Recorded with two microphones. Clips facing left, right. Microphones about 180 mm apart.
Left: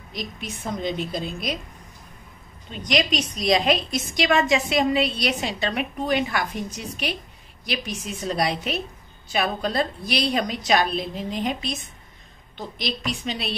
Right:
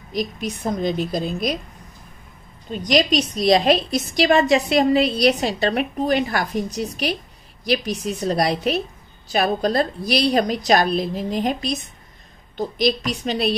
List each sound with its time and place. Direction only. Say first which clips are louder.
0.1 s a woman's voice: right 8 dB; 40° right (ahead or behind)
2.7 s a woman's voice: right 5 dB; 35° right (ahead or behind)